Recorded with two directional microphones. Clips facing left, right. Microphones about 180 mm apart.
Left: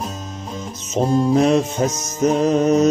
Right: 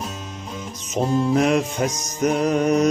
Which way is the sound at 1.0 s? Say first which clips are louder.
Left 3 dB; 40° left (ahead or behind).